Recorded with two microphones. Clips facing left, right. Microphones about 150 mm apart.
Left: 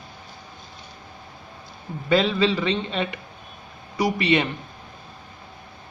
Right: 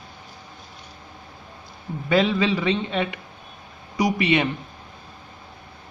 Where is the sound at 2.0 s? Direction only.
15° right (ahead or behind).